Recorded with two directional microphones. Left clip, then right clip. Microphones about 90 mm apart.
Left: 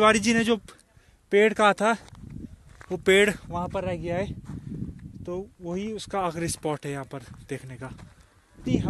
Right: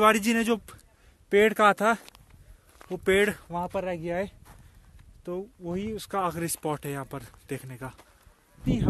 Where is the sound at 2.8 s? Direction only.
25° left (ahead or behind).